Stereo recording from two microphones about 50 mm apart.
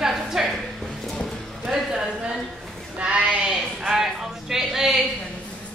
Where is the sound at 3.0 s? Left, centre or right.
Right.